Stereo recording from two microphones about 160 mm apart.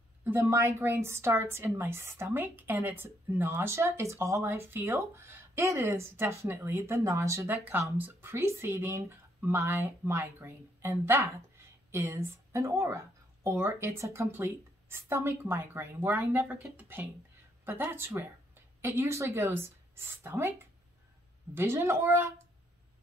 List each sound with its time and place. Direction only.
0.2 s speech: 15° right (ahead or behind)
21.5 s speech: 15° right (ahead or behind)